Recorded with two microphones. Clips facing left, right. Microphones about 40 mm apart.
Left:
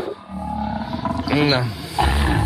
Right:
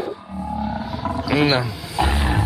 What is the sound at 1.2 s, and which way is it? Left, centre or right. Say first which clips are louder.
Roaring cats: right 1 dB; centre.